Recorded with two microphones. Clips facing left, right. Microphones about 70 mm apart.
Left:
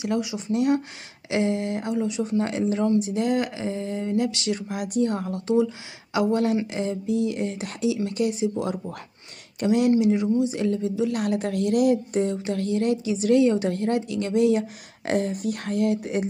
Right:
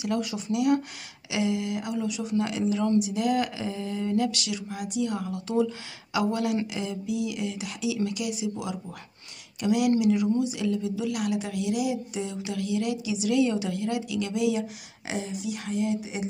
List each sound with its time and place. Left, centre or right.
0.5 s speech: left
4.6 s a woman's voice: left